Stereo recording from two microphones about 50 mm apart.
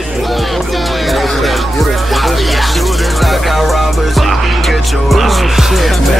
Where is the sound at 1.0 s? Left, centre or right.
Centre.